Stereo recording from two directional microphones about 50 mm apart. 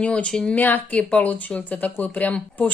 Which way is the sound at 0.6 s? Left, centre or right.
Left.